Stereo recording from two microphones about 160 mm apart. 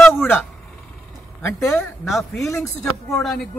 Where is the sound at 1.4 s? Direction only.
20° left (ahead or behind).